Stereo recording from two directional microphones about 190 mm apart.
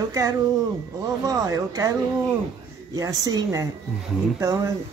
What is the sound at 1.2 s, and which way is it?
Speech, 20° right (ahead or behind).